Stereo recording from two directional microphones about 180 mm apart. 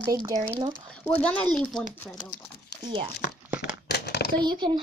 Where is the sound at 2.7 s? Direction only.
70° left (ahead or behind).